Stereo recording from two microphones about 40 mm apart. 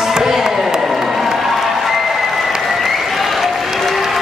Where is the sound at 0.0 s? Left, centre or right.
Centre.